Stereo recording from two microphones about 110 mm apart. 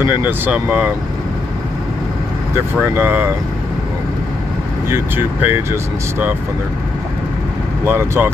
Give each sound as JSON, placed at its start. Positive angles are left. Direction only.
{"t": 0.0, "sound": "speech", "side_deg": -15}
{"t": 2.8, "sound": "speech", "side_deg": -20}
{"t": 4.8, "sound": "speech", "side_deg": -20}
{"t": 7.8, "sound": "speech", "side_deg": -25}